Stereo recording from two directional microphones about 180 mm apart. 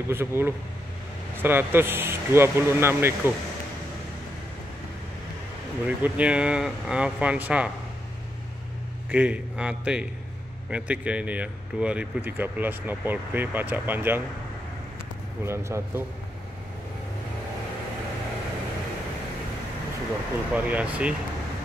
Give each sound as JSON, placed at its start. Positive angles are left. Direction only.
{"t": 0.1, "sound": "speech", "side_deg": -15}
{"t": 5.9, "sound": "speech", "side_deg": -10}
{"t": 9.1, "sound": "speech", "side_deg": -5}
{"t": 15.4, "sound": "speech", "side_deg": -15}
{"t": 20.5, "sound": "speech", "side_deg": -10}